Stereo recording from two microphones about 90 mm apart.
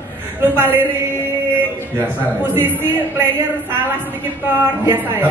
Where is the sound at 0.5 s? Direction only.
25° right (ahead or behind).